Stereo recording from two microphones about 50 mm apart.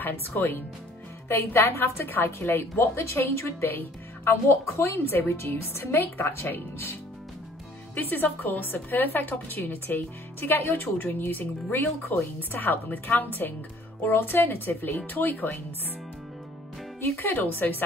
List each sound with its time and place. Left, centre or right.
0.1 s speech: left
3.0 s a woman's voice: left
3.6 s speech: left
4.6 s a woman's voice: left
7.9 s a woman's voice: left
12.4 s a woman's voice: left
17.0 s a woman's voice: left